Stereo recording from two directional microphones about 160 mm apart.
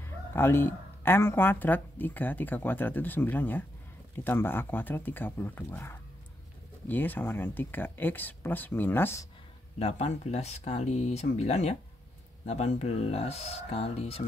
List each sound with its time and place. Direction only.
0.0 s speech: 15° left (ahead or behind)
9.8 s speech: 40° left (ahead or behind)